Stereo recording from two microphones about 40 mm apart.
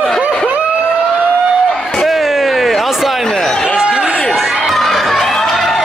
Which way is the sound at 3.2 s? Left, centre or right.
Centre.